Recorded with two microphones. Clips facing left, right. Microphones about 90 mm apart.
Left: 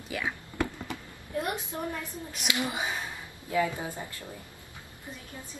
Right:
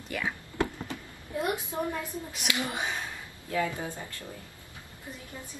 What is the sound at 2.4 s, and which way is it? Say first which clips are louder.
Speech: left 1 dB; 20° left (ahead or behind).